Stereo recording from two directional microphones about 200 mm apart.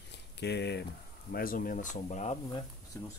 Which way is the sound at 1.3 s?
45° left (ahead or behind).